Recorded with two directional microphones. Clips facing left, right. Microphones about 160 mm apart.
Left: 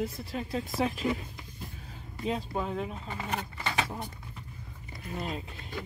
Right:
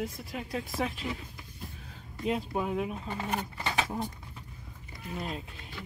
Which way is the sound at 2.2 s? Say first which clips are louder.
Right 1 dB; 10° right (ahead or behind).